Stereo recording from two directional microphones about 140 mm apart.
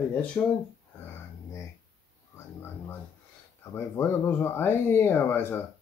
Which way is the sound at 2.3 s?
15° left (ahead or behind).